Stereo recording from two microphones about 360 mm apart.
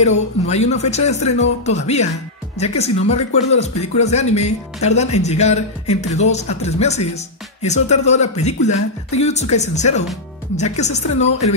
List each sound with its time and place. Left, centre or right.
0.0 s speech: centre